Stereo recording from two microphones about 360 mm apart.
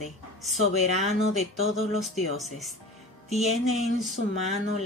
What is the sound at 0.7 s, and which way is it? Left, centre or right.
Speech, left.